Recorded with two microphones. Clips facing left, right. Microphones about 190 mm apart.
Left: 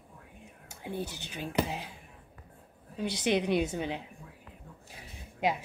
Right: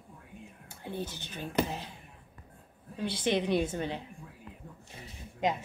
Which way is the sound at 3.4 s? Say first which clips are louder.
Even; 15° left (ahead or behind).